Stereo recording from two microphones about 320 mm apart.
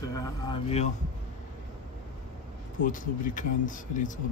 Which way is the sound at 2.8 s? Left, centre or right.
Left.